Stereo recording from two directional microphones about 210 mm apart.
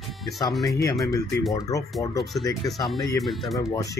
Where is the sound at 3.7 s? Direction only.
15° left (ahead or behind).